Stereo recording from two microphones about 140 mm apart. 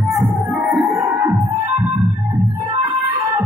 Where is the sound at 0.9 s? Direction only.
20° right (ahead or behind).